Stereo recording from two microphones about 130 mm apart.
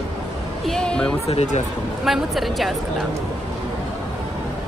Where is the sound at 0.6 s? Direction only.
5° left (ahead or behind).